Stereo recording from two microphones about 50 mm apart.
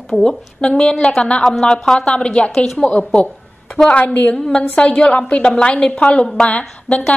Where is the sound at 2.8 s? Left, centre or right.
Left.